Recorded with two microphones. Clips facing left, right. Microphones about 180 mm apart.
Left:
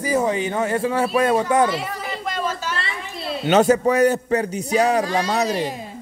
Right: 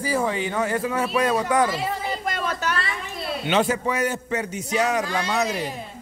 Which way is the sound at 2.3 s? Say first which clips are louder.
Left 2 dB; 65° right (ahead or behind).